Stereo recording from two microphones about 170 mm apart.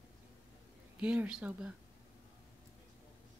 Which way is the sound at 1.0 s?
10° right (ahead or behind).